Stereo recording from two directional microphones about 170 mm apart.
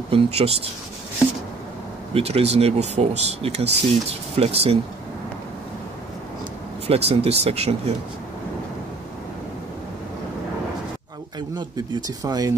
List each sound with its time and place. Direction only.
0.1 s speech: 35° right (ahead or behind)
2.1 s speech: 35° right (ahead or behind)
6.9 s speech: 35° right (ahead or behind)
11.5 s speech: 25° right (ahead or behind)